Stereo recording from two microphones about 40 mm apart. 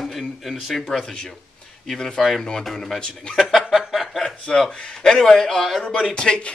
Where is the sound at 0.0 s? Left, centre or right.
Centre.